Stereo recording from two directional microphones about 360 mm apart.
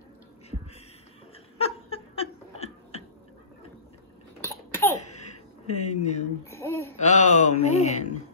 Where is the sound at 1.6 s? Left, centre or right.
Centre.